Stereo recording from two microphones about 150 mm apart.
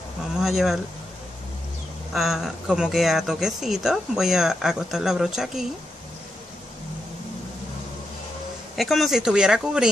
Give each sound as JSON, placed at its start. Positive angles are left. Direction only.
{"t": 0.4, "sound": "speech", "side_deg": 0}
{"t": 2.1, "sound": "speech", "side_deg": 0}
{"t": 8.7, "sound": "speech", "side_deg": 0}